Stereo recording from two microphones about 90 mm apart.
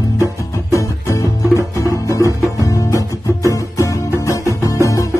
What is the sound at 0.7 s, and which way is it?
Music, 35° left (ahead or behind).